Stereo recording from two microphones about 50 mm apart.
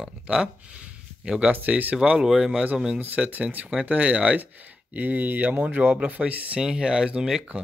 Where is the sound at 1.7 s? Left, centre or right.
Centre.